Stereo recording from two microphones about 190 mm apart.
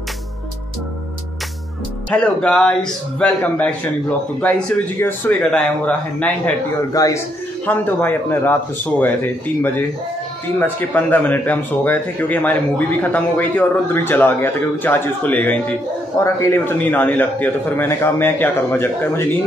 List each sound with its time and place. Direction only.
2.0 s a man's voice: 5° left (ahead or behind)
6.9 s a man's voice: 20° left (ahead or behind)
10.6 s speech: 10° left (ahead or behind)